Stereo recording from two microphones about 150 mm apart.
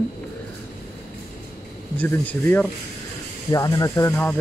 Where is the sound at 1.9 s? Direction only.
10° left (ahead or behind).